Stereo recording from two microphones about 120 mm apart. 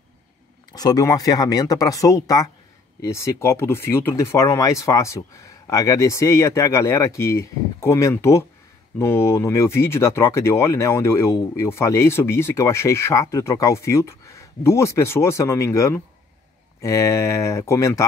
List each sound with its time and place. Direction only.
0.7 s speech: 30° left (ahead or behind)